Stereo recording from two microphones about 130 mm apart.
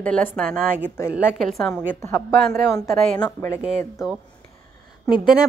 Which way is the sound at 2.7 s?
25° left (ahead or behind).